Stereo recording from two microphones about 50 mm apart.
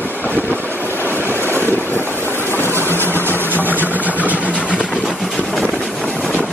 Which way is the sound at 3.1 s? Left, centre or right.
Right.